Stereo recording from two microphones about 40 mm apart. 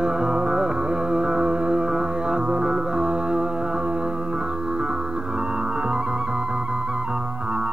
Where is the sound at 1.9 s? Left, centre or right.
Right.